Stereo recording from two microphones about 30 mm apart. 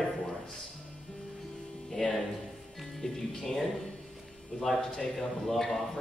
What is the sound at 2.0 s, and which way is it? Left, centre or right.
A man's voice, centre.